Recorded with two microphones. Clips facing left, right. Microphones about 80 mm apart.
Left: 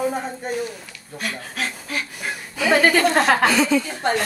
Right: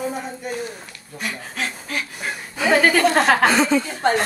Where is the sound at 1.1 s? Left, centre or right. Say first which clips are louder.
Even; centre.